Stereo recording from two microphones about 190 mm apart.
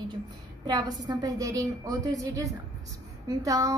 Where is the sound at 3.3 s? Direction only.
15° right (ahead or behind).